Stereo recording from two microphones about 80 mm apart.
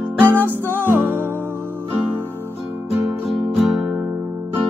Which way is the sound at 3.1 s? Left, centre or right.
Centre.